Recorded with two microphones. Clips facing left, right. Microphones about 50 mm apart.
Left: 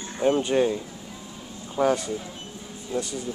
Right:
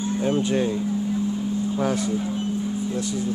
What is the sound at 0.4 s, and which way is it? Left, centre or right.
Speech, centre.